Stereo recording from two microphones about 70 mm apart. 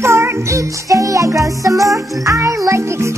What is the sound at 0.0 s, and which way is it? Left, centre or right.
Music, right.